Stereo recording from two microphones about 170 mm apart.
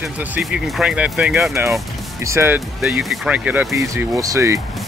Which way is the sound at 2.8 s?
Centre (ahead or behind).